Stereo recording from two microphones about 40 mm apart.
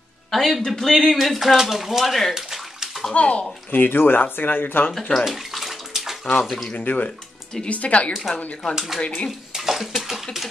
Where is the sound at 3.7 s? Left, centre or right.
Left.